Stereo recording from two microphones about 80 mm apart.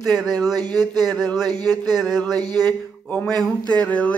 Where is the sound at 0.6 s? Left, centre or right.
Right.